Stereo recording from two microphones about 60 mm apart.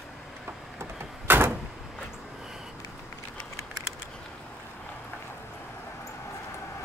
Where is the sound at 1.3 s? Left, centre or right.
Right.